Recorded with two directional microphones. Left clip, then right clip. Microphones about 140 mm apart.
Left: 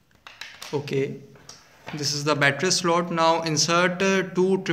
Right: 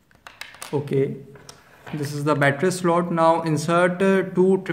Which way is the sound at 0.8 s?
35° right (ahead or behind).